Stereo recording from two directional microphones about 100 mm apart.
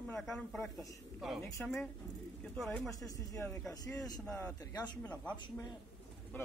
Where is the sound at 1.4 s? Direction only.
20° left (ahead or behind).